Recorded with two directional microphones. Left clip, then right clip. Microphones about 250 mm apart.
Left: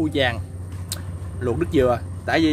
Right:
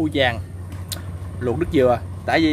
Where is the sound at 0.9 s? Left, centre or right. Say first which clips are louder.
Right 1 dB; centre.